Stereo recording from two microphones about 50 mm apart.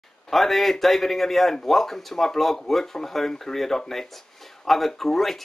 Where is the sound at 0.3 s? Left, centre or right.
Centre.